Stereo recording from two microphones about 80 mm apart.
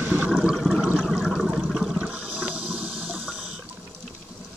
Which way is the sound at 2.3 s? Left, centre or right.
Centre.